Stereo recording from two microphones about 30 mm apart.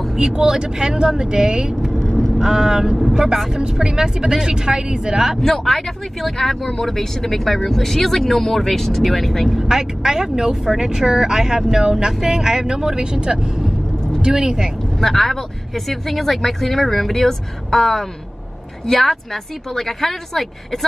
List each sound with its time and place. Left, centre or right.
0.1 s speech: right
1.8 s vehicle: centre
2.3 s speech: right
5.4 s speech: centre
9.7 s speech: right
15.0 s speech: centre